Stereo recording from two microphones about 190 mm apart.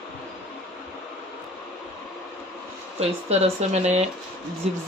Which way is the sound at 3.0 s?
35° right (ahead or behind).